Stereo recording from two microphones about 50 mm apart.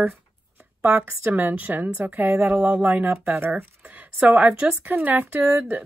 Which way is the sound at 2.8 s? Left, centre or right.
Right.